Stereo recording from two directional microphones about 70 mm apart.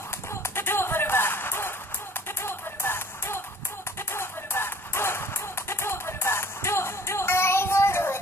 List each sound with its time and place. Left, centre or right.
0.3 s music: left